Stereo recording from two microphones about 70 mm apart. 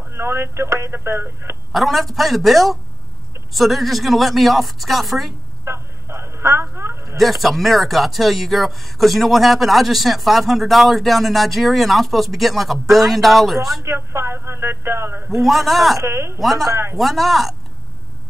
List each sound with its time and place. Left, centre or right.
0.1 s speech: right
1.7 s speech: centre
5.7 s telephone: right
7.4 s speech: centre
13.8 s speech: right
15.4 s speech: centre
16.0 s speech: right
16.3 s speech: centre